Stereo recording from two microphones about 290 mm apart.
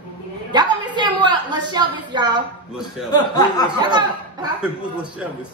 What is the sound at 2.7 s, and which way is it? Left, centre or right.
Speech, centre.